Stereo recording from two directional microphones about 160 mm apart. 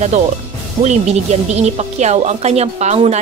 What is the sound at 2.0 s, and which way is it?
A woman's voice, 45° right (ahead or behind).